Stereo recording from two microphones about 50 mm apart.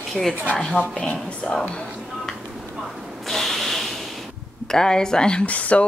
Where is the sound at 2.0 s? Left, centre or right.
Centre.